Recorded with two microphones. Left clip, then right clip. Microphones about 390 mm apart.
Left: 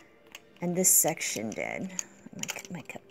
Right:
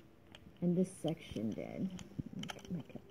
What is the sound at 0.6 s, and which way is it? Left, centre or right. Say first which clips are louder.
Speech: left 11 dB; left.